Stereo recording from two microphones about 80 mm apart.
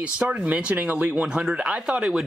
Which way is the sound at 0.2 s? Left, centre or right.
Centre.